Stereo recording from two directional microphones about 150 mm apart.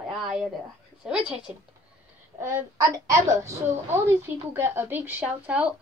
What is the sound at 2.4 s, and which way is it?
A child's voice, 20° right (ahead or behind).